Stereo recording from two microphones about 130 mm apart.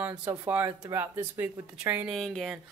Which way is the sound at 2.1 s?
Centre (ahead or behind).